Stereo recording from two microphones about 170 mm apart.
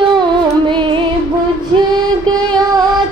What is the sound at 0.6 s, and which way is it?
Music, 30° right (ahead or behind).